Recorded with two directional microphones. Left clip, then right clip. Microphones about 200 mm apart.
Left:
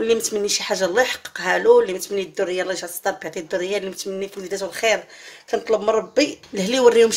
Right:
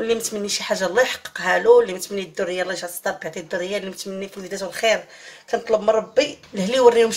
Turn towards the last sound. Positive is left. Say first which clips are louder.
# even
turn(degrees=30)  # may be behind; listen again after turning